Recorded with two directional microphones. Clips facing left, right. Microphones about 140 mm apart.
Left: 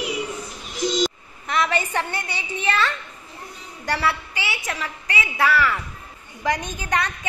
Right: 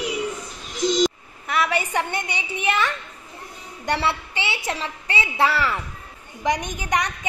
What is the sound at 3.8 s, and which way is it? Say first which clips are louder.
A woman's voice: even; 25° right (ahead or behind).